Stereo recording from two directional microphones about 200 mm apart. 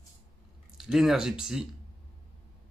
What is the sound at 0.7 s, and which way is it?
Speech, centre (ahead or behind).